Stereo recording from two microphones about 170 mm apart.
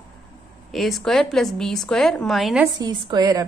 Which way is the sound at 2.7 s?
20° right (ahead or behind).